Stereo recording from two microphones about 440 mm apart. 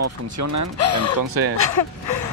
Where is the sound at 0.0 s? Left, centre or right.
Right.